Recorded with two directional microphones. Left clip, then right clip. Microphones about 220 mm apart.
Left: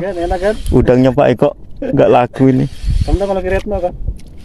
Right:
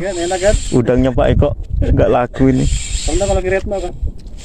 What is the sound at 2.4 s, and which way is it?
Speech, 10° left (ahead or behind).